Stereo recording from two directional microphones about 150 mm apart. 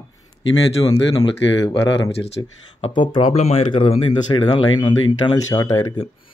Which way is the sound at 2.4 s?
25° left (ahead or behind).